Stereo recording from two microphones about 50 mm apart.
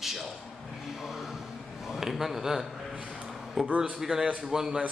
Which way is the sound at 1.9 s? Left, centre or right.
Centre.